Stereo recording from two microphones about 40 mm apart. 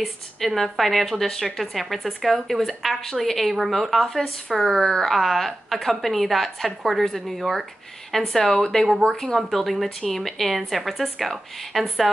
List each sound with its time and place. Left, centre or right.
0.6 s a woman's voice: centre
9.5 s speech: centre